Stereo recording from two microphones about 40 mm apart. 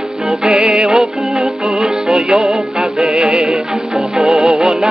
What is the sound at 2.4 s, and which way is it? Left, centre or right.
Music, centre.